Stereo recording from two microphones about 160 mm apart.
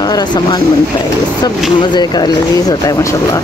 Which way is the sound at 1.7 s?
25° left (ahead or behind).